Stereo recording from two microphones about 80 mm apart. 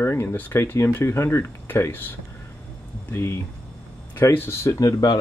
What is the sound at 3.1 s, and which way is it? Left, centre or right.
Speech, left.